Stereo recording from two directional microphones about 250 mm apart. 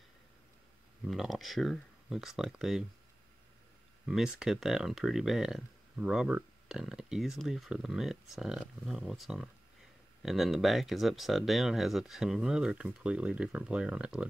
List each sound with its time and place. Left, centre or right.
1.0 s speech: centre
4.0 s speech: centre